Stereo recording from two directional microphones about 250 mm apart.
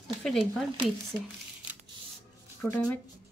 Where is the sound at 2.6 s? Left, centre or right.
Centre.